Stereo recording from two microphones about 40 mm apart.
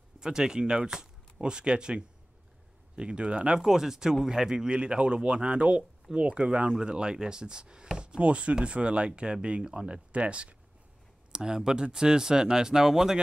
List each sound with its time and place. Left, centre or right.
0.2 s speech: centre
3.5 s speech: centre
8.2 s speech: right
11.3 s speech: centre